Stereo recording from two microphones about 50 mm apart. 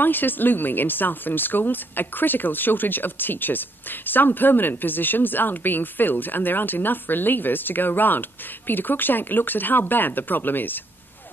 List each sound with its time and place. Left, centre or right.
0.0 s speech: left